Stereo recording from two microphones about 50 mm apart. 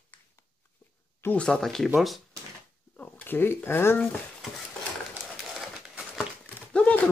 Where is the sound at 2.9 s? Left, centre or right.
Left.